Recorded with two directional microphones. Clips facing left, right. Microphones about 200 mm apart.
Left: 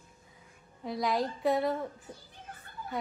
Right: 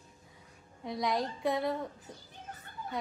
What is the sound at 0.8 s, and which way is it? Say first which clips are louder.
Speech: left 2 dB; centre (ahead or behind).